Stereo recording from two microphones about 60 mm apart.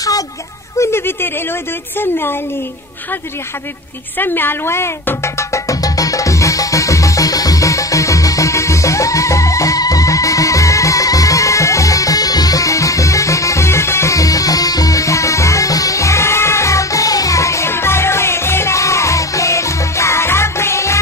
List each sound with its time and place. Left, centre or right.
0.7 s speech: left
4.2 s music: left